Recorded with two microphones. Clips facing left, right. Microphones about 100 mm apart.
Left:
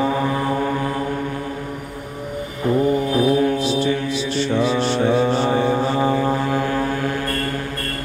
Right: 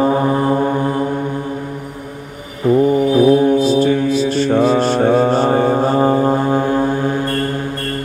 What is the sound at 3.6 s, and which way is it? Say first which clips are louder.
Mantra: right 7 dB; 45° right (ahead or behind).